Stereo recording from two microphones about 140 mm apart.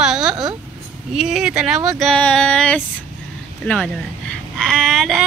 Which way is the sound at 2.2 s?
5° left (ahead or behind).